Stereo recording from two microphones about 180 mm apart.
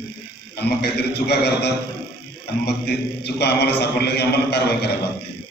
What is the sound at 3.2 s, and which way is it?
A man's voice, 65° left (ahead or behind).